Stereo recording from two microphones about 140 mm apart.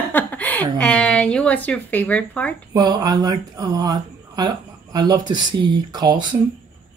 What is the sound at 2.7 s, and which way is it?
Speech, 30° right (ahead or behind).